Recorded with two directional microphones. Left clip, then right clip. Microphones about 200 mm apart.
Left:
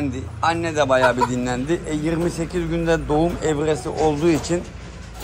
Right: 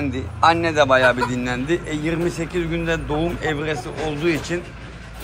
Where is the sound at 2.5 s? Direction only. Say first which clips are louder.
Even; 55° left (ahead or behind).